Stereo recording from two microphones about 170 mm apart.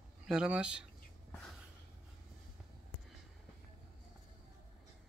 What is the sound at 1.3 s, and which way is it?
Snort, 5° left (ahead or behind).